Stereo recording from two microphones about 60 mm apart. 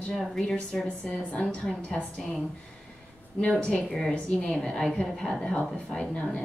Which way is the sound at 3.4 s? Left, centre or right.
Left.